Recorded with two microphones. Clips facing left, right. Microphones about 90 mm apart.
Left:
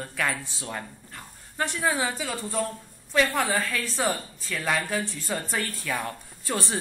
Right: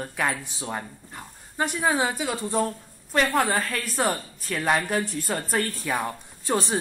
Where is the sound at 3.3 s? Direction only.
45° right (ahead or behind).